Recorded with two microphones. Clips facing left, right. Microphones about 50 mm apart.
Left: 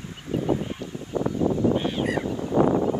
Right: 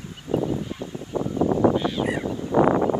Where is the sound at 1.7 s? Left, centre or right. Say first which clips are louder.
Right 1 dB; left.